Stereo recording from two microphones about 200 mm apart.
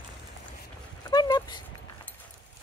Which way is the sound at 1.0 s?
20° left (ahead or behind).